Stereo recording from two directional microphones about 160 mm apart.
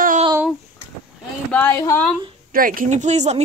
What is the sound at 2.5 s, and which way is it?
Speech, 60° right (ahead or behind).